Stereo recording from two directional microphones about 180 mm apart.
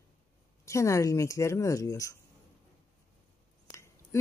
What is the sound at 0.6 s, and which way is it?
Speech, 15° left (ahead or behind).